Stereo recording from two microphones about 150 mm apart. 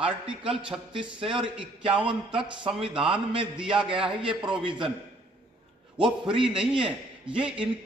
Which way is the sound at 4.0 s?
35° right (ahead or behind).